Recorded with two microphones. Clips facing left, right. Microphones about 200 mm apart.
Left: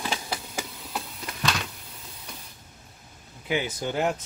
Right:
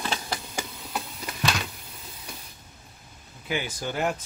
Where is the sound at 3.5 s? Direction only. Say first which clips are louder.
Left 3 dB; 20° left (ahead or behind).